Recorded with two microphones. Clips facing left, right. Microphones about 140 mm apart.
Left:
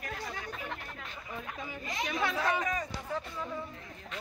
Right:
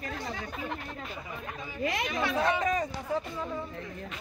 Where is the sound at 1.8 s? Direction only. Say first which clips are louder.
Right 8 dB; 70° right (ahead or behind).